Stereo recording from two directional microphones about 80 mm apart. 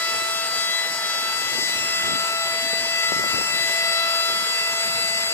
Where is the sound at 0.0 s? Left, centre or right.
Left.